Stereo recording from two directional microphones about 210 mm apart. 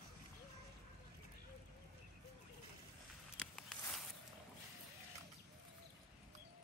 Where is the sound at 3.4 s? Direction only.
Centre (ahead or behind).